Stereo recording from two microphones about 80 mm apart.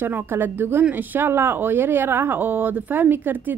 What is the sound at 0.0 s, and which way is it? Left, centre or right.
A woman's voice, right.